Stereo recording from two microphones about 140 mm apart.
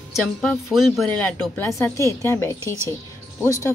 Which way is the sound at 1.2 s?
15° left (ahead or behind).